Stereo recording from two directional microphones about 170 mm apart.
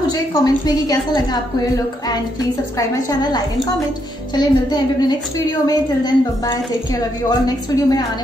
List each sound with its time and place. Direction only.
0.3 s a woman's voice: 20° left (ahead or behind)
3.1 s a woman's voice: 25° left (ahead or behind)